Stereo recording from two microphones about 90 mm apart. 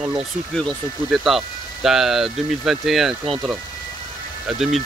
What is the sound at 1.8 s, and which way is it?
Speech, 5° right (ahead or behind).